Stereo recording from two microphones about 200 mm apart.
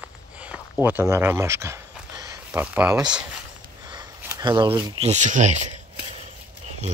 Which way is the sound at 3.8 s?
20° right (ahead or behind).